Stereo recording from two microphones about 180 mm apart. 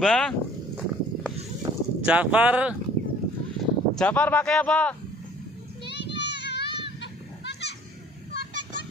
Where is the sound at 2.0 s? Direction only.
5° right (ahead or behind).